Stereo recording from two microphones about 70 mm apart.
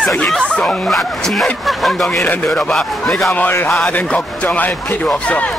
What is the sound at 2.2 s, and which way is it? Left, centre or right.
Speech, centre.